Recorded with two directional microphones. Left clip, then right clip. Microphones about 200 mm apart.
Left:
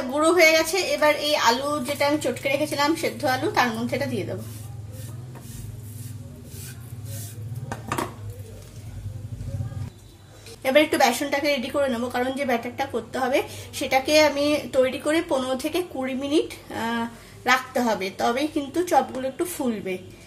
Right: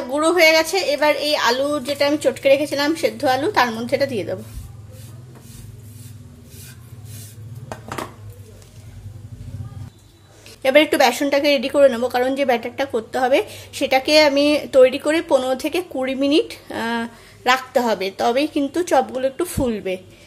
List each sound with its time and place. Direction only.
0.1 s a woman's voice: 30° right (ahead or behind)
10.6 s a woman's voice: 35° right (ahead or behind)